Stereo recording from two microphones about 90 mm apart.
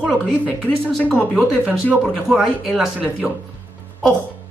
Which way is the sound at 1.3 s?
15° right (ahead or behind).